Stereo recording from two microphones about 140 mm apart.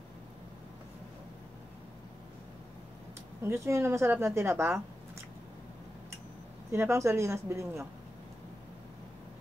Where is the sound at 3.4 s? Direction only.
20° right (ahead or behind).